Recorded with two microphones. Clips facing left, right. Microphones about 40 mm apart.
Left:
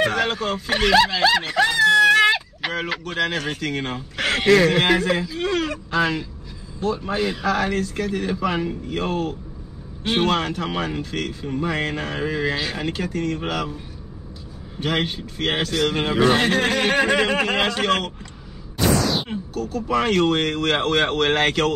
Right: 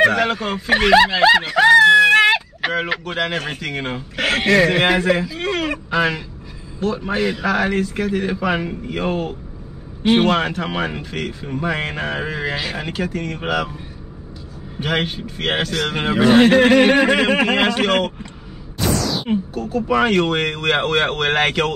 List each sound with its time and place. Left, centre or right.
0.1 s speech: centre
1.9 s a sound: right
2.7 s speech: centre
14.8 s speech: centre
19.2 s speech: centre